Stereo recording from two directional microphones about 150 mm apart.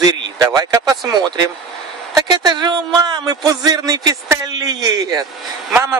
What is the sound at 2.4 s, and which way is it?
Speech, 25° right (ahead or behind).